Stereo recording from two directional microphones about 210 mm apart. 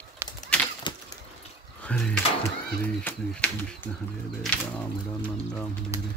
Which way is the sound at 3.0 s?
5° left (ahead or behind).